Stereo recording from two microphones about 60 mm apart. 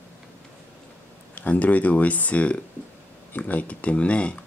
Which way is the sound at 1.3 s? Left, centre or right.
Left.